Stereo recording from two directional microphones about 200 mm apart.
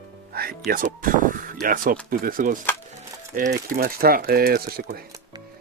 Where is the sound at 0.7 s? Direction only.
45° right (ahead or behind).